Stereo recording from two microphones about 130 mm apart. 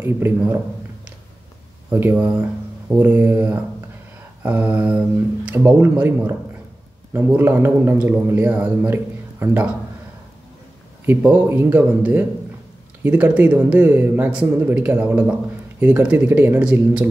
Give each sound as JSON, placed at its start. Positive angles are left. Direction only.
{"t": 0.0, "sound": "a man's voice", "side_deg": -20}
{"t": 1.9, "sound": "a man's voice", "side_deg": -15}
{"t": 11.1, "sound": "a man's voice", "side_deg": -15}